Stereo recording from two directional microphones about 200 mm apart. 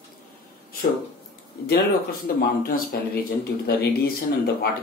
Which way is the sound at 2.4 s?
50° left (ahead or behind).